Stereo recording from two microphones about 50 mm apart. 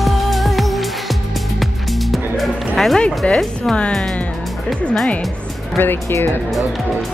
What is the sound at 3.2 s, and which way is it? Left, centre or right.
Speech, left.